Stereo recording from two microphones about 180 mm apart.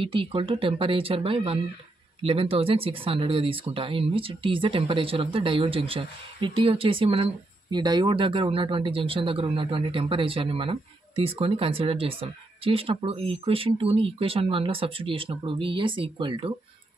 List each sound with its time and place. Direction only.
0.0 s speech: 30° right (ahead or behind)